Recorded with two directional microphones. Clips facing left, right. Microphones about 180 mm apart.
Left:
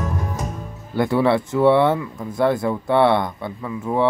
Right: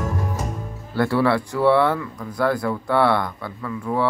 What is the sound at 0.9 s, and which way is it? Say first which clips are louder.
Speech: left 1 dB; 20° left (ahead or behind).